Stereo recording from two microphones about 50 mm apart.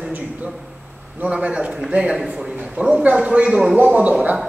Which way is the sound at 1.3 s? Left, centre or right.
Right.